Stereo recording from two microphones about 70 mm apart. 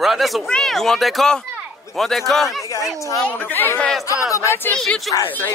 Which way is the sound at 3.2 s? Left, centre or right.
Left.